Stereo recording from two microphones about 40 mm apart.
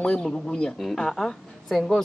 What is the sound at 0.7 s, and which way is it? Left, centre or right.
A woman's voice, centre.